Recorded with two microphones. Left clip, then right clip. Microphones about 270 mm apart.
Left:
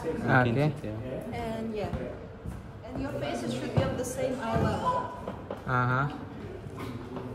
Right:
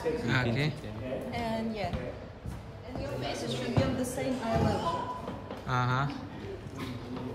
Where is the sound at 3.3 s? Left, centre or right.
Left.